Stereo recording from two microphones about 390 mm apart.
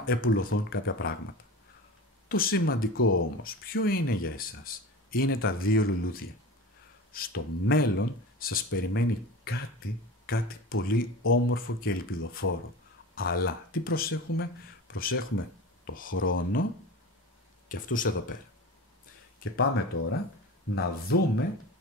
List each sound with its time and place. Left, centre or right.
0.0 s speech: left
2.2 s speech: left
17.6 s speech: left
19.5 s speech: left